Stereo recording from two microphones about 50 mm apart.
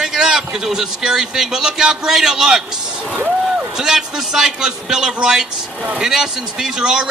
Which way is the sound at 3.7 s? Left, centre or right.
Centre.